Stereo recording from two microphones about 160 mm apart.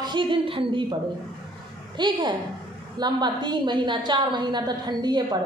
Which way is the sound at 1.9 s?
30° right (ahead or behind).